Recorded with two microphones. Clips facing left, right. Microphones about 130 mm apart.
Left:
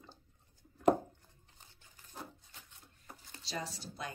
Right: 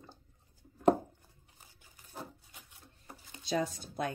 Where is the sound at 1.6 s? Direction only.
10° right (ahead or behind).